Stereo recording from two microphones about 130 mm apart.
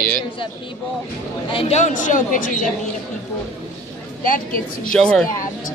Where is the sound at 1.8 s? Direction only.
75° left (ahead or behind).